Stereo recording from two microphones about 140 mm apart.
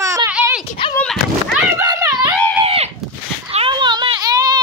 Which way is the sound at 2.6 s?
45° right (ahead or behind).